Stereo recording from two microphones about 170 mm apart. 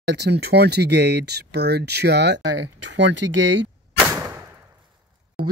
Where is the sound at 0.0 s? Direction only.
85° right.